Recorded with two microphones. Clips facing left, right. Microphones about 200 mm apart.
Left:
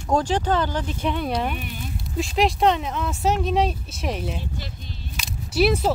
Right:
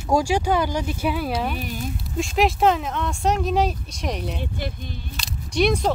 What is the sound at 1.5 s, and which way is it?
Speech, 40° right (ahead or behind).